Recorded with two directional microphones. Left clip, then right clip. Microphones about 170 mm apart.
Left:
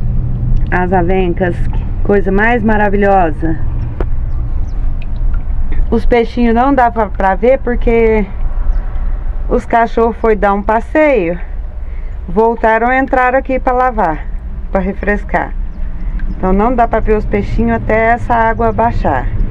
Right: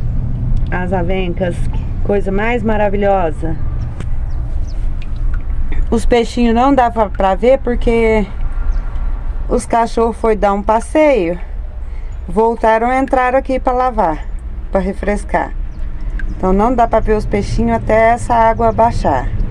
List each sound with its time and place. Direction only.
0.7 s speech: 5° left (ahead or behind)
5.7 s speech: 20° right (ahead or behind)
9.5 s speech: 10° right (ahead or behind)
14.7 s speech: 20° right (ahead or behind)